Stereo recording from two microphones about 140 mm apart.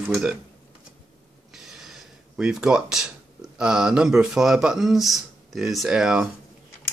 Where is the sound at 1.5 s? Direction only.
Centre (ahead or behind).